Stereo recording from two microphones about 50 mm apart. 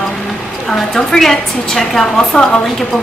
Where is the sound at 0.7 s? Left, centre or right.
Centre.